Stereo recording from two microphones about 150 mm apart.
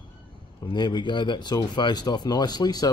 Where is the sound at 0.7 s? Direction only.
30° left (ahead or behind).